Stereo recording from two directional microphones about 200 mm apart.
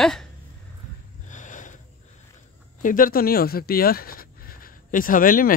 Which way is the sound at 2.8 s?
45° left (ahead or behind).